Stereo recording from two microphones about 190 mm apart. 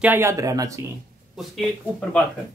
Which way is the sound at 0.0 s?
10° right (ahead or behind).